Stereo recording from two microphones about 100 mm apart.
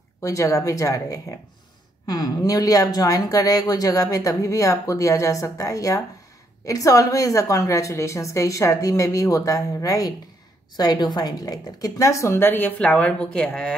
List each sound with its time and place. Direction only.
0.2 s a woman's voice: 30° left (ahead or behind); by 13.7 s 10° left (ahead or behind)